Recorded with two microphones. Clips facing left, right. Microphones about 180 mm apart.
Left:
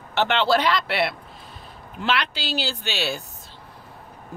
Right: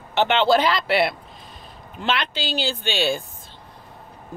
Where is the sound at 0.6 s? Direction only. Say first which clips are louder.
Right 3 dB; centre (ahead or behind).